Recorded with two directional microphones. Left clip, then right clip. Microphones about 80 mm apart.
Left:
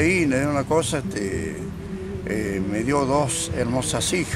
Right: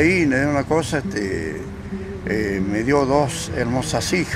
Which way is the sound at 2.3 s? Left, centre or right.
Left.